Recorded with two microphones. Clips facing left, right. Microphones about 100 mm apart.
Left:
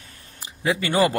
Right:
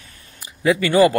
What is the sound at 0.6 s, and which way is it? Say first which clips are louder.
Speech: right 6 dB; 25° left (ahead or behind).